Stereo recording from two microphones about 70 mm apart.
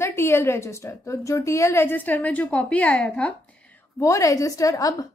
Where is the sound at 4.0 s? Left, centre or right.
Left.